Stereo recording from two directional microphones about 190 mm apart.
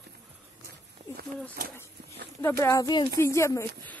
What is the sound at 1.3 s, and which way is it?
Speech, 40° right (ahead or behind).